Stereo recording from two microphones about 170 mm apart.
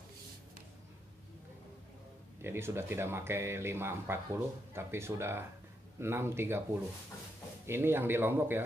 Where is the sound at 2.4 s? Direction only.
15° right (ahead or behind).